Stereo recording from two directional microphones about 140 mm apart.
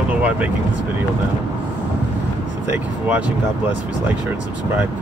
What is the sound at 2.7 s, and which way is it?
Speech, 10° right (ahead or behind).